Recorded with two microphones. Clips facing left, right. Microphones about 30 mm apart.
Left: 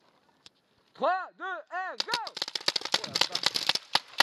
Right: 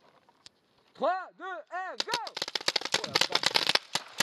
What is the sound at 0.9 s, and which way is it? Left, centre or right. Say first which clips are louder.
Speech: left 2 dB; left.